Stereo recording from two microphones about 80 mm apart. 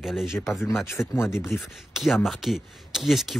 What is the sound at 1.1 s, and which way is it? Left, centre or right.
Speech, left.